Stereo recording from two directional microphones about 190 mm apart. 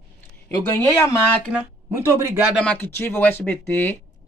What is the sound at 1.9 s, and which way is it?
Speech, 15° right (ahead or behind).